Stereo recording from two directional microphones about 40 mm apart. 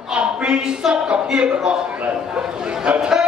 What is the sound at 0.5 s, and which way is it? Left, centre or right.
A man's voice, centre.